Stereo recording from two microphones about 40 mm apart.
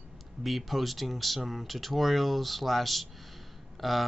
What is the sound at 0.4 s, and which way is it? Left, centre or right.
Speech, centre.